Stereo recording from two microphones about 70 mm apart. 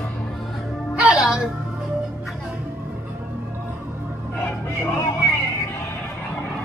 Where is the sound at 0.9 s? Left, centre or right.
Centre.